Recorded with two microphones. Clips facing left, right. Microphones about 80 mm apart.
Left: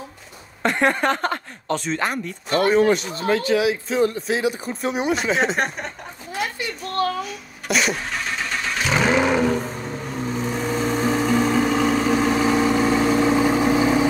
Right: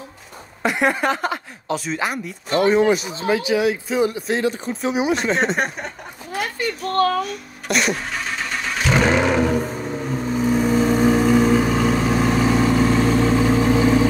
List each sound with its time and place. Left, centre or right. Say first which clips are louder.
0.6 s speech: even; centre
4.3 s speech: right 1 dB; centre
6.6 s a sound: right 7 dB; right
7.2 s vehicle: right 1 dB; centre